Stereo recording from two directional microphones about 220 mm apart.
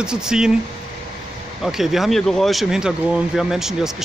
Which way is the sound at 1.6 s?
Centre (ahead or behind).